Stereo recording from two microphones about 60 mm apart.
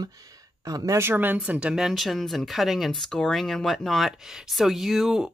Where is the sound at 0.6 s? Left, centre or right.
Right.